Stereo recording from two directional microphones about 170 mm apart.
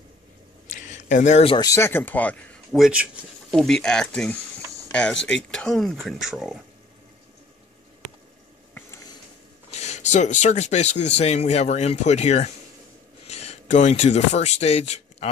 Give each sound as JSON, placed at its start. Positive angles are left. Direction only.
{"t": 0.7, "sound": "a sound", "side_deg": 45}
{"t": 1.6, "sound": "speech", "side_deg": 15}
{"t": 8.0, "sound": "squish", "side_deg": -45}
{"t": 9.7, "sound": "speech", "side_deg": 40}